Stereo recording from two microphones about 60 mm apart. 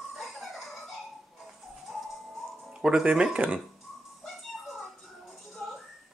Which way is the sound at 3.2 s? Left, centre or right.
Right.